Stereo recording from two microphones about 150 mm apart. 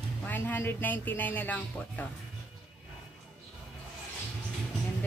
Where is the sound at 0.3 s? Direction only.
10° left (ahead or behind).